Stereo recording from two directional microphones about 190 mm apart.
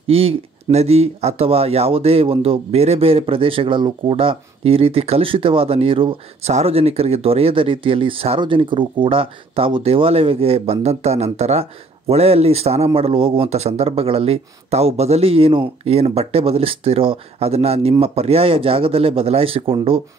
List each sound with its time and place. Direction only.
0.0 s a man's voice: 30° right (ahead or behind)